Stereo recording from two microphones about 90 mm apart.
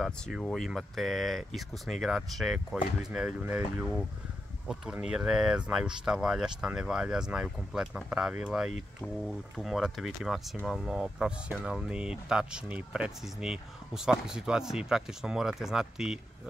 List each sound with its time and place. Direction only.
0.4 s speech: 5° left (ahead or behind)
3.1 s speech: 15° right (ahead or behind)
5.0 s speech: 10° right (ahead or behind)